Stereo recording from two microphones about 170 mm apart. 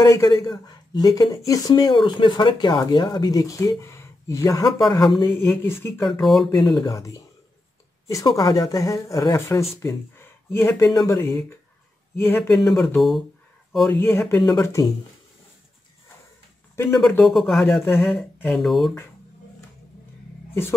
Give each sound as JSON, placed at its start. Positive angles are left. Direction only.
{"t": 0.0, "sound": "speech", "side_deg": 15}
{"t": 6.0, "sound": "speech", "side_deg": 0}
{"t": 6.5, "sound": "speech", "side_deg": 25}
{"t": 12.5, "sound": "speech", "side_deg": 0}
{"t": 17.1, "sound": "speech", "side_deg": 5}